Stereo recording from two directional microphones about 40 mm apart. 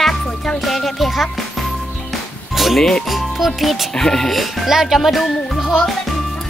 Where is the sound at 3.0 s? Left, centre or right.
Centre.